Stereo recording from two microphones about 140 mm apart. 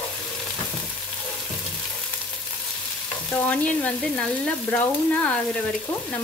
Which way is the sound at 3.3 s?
10° left (ahead or behind).